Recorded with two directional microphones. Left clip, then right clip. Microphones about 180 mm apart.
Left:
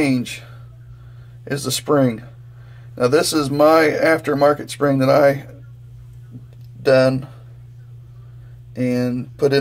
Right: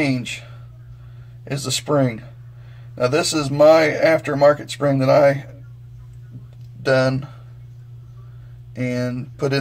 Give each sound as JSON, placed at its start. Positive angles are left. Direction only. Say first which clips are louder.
{"t": 1.4, "sound": "speech", "louder": "left 1 dB", "side_deg": 20}
{"t": 6.8, "sound": "speech", "louder": "left 4 dB", "side_deg": 20}
{"t": 8.8, "sound": "speech", "louder": "left 3 dB", "side_deg": 20}